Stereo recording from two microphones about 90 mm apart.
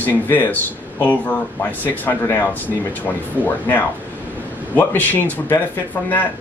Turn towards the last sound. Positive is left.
turn(degrees=25)  # may be behind; listen again after turning